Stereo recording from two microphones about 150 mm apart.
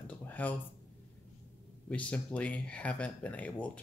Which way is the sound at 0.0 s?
10° left (ahead or behind).